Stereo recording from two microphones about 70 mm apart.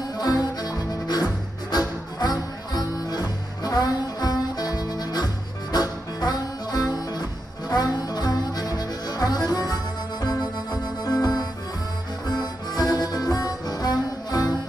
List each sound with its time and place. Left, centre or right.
0.2 s music: left